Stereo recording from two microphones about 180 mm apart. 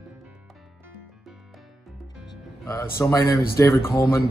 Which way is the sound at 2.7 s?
15° left (ahead or behind).